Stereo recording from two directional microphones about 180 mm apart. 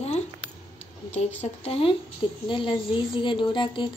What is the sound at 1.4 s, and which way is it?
A woman's voice, 35° left (ahead or behind).